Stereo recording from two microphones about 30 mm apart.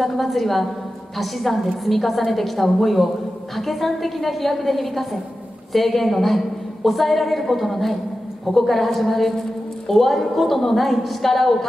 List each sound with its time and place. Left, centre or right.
0.0 s a woman's voice: centre